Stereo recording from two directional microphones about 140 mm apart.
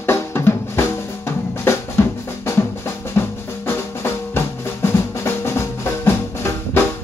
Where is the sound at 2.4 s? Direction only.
20° left (ahead or behind).